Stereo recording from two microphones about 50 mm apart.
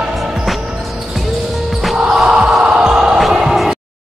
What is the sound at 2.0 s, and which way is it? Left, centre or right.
Basketball bounce, centre.